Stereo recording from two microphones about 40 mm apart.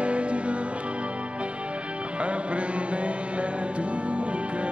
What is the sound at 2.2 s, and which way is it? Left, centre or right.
Music, right.